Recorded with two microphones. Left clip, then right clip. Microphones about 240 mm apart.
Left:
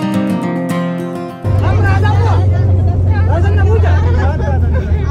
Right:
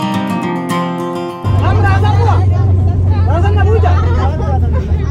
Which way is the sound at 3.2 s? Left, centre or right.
Centre.